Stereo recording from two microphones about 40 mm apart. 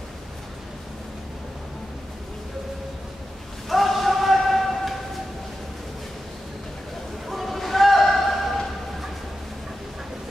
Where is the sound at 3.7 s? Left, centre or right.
Centre.